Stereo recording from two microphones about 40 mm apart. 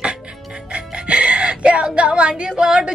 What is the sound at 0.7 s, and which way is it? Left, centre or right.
Music, right.